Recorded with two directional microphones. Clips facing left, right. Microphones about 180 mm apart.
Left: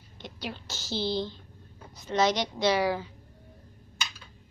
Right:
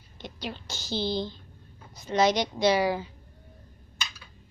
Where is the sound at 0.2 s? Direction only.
5° left (ahead or behind).